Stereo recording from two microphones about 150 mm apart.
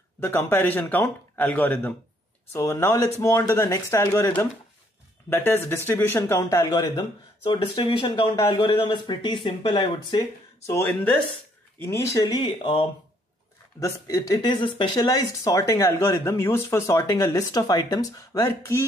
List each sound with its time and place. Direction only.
0.2 s a man's voice: 15° left (ahead or behind); by 10.2 s 35° left (ahead or behind)
10.7 s speech: 15° left (ahead or behind); by 12.8 s 35° left (ahead or behind)
13.7 s speech: 25° left (ahead or behind)